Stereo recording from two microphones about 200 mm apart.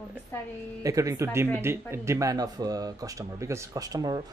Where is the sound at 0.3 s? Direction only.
10° left (ahead or behind).